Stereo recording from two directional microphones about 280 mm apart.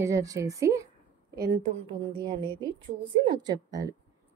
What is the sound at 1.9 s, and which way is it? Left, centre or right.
A woman's voice, centre.